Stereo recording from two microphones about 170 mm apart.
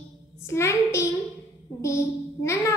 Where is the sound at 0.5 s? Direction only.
15° left (ahead or behind).